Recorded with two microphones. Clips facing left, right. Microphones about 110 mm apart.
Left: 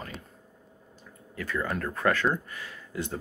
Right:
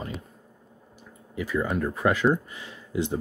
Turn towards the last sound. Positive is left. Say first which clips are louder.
# right 6 dB
turn(degrees=-15)  # may be behind; listen again after turning